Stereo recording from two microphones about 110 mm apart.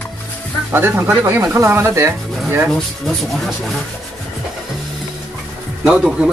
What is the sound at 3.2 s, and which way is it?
Speech, centre (ahead or behind).